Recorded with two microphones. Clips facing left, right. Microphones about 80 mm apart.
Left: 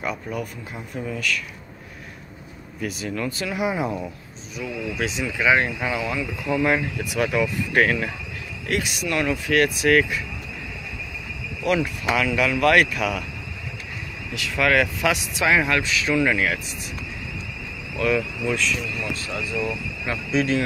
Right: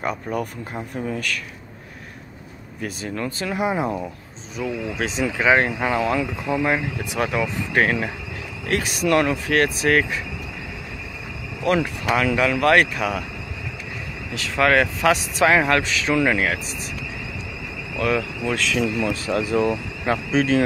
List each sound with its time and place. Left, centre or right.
0.0 s speech: right
2.8 s speech: right
6.4 s speech: right
8.6 s speech: right
11.6 s speech: right
14.3 s speech: right
17.9 s speech: right
18.7 s speech: right
19.5 s speech: right